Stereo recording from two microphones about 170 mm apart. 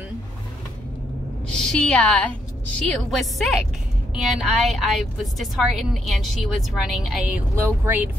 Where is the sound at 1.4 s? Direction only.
5° left (ahead or behind).